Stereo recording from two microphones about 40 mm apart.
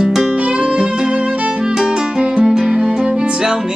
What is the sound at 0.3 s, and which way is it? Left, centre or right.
Music, right.